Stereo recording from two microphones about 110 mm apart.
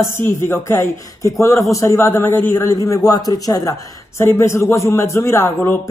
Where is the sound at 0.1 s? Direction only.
25° left (ahead or behind).